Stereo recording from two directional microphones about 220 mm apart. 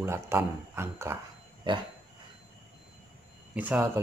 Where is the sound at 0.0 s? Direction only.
10° right (ahead or behind).